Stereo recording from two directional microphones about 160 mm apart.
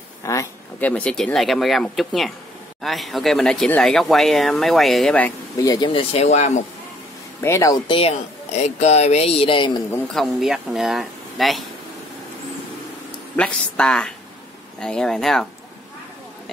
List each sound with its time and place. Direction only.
0.2 s speech: 20° left (ahead or behind)
5.6 s speech: 20° left (ahead or behind)
5.9 s speech: 40° left (ahead or behind)
7.4 s speech: 20° left (ahead or behind)
8.5 s speech: 45° left (ahead or behind)
10.1 s speech: centre (ahead or behind)
13.4 s speech: 5° left (ahead or behind)